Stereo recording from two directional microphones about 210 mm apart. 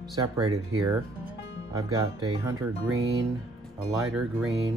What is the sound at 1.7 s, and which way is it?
Speech, 15° right (ahead or behind).